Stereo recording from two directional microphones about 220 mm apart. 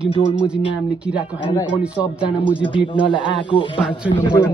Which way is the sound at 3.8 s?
5° right (ahead or behind).